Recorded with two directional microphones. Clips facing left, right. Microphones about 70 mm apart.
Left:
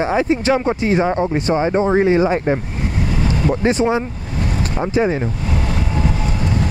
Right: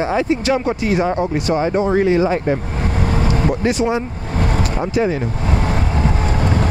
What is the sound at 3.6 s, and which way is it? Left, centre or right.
Speech, left.